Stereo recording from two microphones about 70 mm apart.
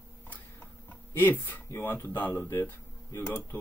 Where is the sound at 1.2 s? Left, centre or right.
Left.